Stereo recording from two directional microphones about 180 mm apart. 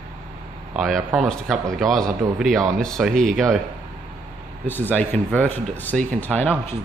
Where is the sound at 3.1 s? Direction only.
45° right (ahead or behind).